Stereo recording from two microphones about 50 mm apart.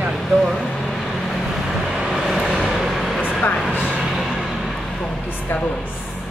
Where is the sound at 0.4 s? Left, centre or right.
Centre.